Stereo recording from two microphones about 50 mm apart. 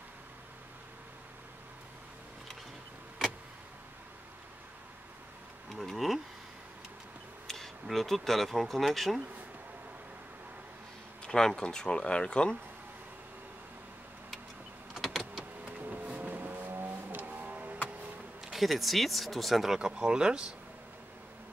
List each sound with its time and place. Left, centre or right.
5.7 s speech: centre
7.4 s a sound: centre
7.8 s speech: centre
11.2 s speech: centre
15.0 s power windows: centre
15.6 s vehicle: right
18.4 s speech: centre
19.8 s speech: centre